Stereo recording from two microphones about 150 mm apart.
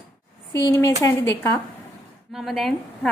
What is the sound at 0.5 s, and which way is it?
A woman's voice, 20° left (ahead or behind).